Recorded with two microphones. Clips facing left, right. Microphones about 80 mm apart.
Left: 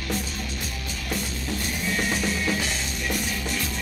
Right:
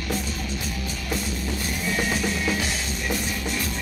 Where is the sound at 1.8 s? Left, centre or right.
Centre.